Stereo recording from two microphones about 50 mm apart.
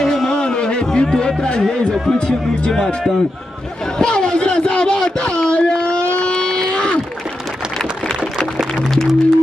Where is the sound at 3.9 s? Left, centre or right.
Centre.